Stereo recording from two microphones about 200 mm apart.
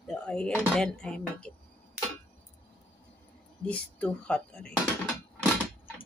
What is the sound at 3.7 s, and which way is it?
Speech, 5° left (ahead or behind).